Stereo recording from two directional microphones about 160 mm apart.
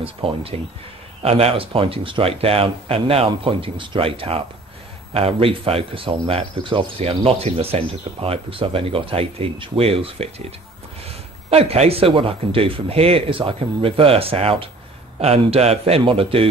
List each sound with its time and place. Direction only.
0.0 s speech: 35° right (ahead or behind)